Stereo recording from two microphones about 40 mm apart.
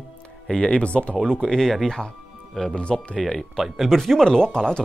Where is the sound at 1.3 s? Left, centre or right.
Centre.